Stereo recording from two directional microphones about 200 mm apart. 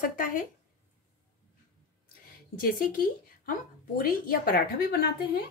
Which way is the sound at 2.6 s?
45° left (ahead or behind).